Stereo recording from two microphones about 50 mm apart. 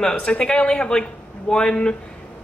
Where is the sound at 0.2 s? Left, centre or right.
Centre.